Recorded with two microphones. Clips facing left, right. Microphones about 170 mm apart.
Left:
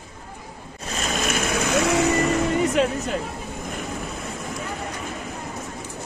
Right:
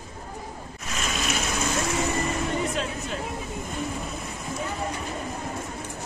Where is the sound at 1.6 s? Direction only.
80° left.